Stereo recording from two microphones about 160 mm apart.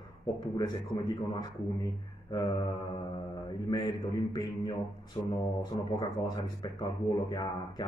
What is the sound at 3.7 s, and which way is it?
Mantra, 25° left (ahead or behind).